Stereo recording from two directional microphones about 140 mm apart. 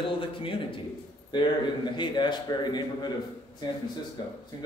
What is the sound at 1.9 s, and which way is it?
Speech, 35° left (ahead or behind).